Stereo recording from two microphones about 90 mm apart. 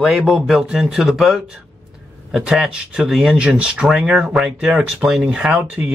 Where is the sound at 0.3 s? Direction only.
5° right (ahead or behind).